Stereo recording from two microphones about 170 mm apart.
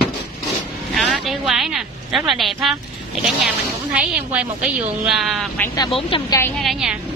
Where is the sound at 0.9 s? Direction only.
Centre (ahead or behind).